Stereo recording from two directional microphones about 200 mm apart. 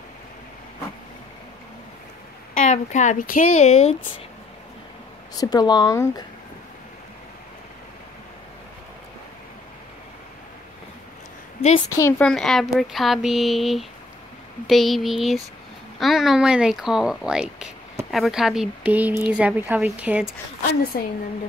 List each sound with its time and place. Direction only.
2.5 s speech: 35° left (ahead or behind)
5.3 s speech: 20° left (ahead or behind)
12.0 s speech: 10° left (ahead or behind); by 20.2 s 5° right (ahead or behind)
20.9 s a woman's voice: 50° left (ahead or behind)